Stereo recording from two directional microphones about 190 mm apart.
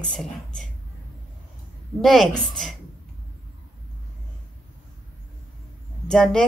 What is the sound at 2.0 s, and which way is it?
Speech, centre (ahead or behind).